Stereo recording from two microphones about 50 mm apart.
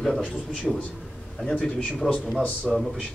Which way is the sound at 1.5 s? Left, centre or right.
Left.